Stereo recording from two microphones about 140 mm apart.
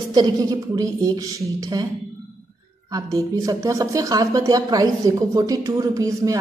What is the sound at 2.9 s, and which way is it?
A woman's voice, 25° right (ahead or behind).